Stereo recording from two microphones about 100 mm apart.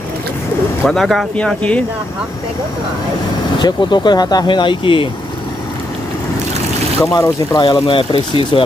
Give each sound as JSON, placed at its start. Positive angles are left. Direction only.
{"t": 0.8, "sound": "speech", "side_deg": 0}
{"t": 3.5, "sound": "speech", "side_deg": 50}
{"t": 7.0, "sound": "speech", "side_deg": 35}
{"t": 7.8, "sound": "speech", "side_deg": 65}